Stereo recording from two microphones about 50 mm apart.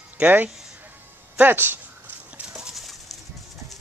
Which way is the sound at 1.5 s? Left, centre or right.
Right.